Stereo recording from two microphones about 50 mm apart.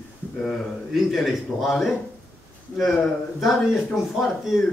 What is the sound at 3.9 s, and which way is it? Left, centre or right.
Speech, centre.